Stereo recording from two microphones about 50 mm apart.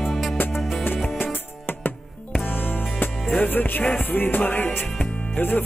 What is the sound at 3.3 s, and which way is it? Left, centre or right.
Music, left.